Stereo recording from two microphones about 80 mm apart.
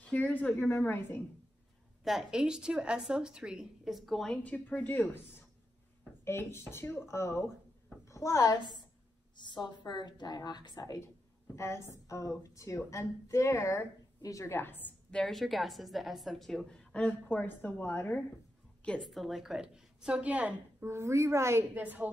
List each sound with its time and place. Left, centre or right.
0.0 s a woman's voice: centre
2.0 s a woman's voice: centre
4.4 s a woman's voice: centre
6.2 s a woman's voice: left
9.4 s a woman's voice: left
11.5 s a woman's voice: left
14.4 s a woman's voice: left
15.0 s a woman's voice: centre
17.1 s a woman's voice: left
19.0 s a woman's voice: centre
20.8 s a woman's voice: right
21.7 s a woman's voice: right